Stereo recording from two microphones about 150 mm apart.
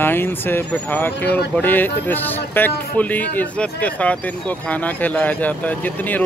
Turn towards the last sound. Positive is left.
turn(degrees=10)  # may be behind; listen again after turning